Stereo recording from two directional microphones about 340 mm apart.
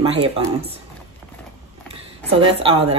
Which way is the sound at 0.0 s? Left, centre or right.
Centre.